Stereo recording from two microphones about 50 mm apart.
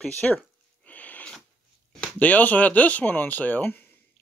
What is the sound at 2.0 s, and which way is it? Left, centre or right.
Speech, left.